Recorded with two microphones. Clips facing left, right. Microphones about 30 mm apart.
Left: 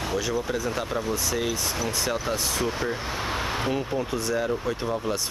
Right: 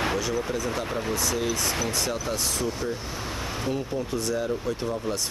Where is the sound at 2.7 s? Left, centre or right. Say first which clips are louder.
Left 2 dB; left.